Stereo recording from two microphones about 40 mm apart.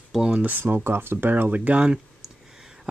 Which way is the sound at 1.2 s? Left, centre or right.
Right.